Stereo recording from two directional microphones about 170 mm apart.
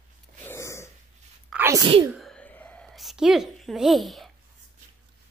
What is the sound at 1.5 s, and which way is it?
Sneeze, 15° right (ahead or behind).